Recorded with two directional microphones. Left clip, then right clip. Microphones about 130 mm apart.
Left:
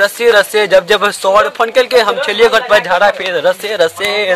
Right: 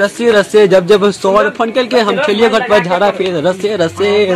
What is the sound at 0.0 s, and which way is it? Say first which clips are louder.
Speech: left 1 dB; 15° left (ahead or behind).